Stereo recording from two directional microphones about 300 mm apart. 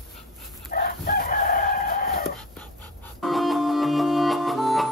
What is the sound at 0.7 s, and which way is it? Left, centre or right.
Chicken, left.